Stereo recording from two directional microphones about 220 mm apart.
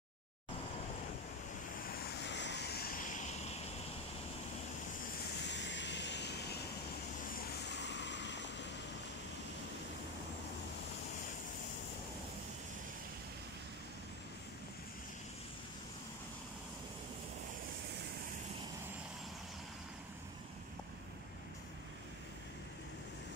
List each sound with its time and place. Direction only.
2.2 s vehicle: 50° left (ahead or behind); by 3.5 s 35° left (ahead or behind)
5.4 s vehicle: 55° left (ahead or behind)